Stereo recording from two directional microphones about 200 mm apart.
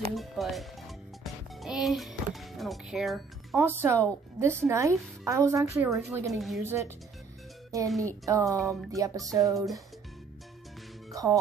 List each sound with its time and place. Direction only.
0.1 s speech: centre (ahead or behind)
6.6 s speech: 10° right (ahead or behind)
8.1 s speech: 15° right (ahead or behind)
11.1 s music: 15° right (ahead or behind)